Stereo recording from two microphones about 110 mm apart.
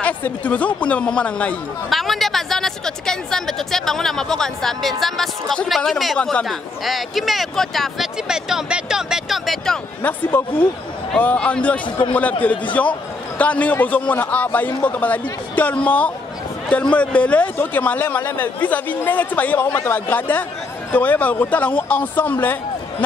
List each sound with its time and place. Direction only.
0.0 s a man's voice: 15° left (ahead or behind)
1.9 s speech: centre (ahead or behind)
10.0 s a man's voice: 15° left (ahead or behind)